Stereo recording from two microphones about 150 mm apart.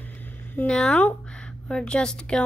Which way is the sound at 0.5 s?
5° left (ahead or behind).